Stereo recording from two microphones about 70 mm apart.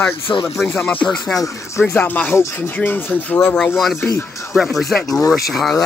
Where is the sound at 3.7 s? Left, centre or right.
Centre.